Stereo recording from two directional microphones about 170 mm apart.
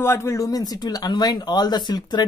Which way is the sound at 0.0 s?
15° left (ahead or behind).